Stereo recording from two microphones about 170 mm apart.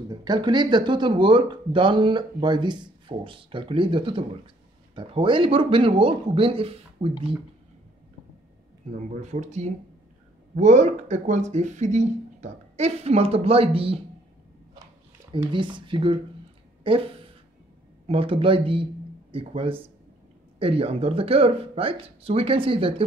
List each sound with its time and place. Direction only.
0.1 s speech: 25° right (ahead or behind)
8.9 s speech: 45° right (ahead or behind)
15.5 s speech: 30° right (ahead or behind)